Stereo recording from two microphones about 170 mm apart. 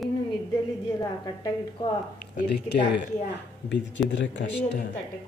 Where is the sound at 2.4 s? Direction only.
90° left.